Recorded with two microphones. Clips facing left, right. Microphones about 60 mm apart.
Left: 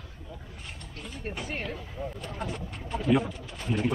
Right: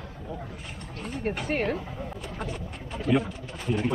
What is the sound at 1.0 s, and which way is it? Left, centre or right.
Speech, right.